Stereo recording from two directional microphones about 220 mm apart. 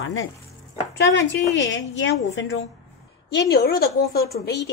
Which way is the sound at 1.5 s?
55° left (ahead or behind).